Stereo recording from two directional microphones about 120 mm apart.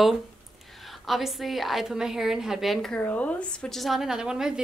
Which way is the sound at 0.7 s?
Centre (ahead or behind).